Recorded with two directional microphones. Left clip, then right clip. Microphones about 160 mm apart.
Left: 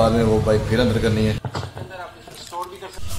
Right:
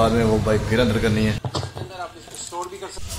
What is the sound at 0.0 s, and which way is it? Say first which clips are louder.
Speech: left 1 dB; 20° right (ahead or behind).